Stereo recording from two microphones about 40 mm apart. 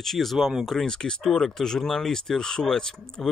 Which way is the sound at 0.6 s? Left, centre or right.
Centre.